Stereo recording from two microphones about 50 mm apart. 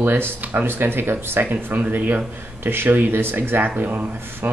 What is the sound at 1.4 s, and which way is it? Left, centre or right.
Speech, right.